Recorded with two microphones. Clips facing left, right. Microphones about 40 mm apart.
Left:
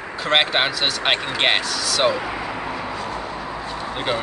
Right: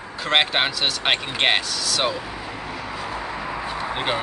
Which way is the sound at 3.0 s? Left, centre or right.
Centre.